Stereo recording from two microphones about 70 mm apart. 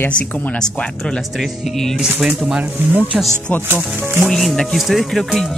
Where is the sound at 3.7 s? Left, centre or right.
Right.